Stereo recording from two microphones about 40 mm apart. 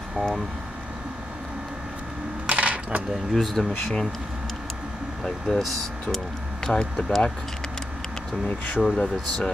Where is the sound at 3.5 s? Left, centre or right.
Centre.